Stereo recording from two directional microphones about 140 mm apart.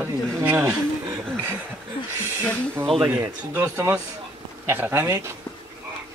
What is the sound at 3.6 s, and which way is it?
A man's voice, 20° right (ahead or behind).